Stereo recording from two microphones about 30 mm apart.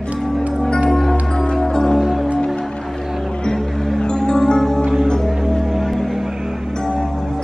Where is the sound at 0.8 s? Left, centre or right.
Centre.